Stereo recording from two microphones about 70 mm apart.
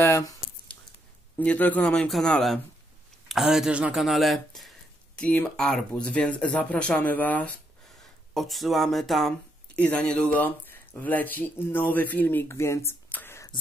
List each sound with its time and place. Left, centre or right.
1.4 s speech: left
3.3 s speech: centre
5.1 s speech: left
5.6 s speech: centre
8.3 s speech: centre
9.8 s speech: centre; by 12.9 s left
13.1 s whispering: left